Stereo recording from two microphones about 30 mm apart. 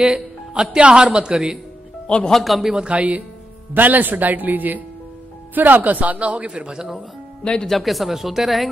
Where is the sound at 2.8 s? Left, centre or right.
Right.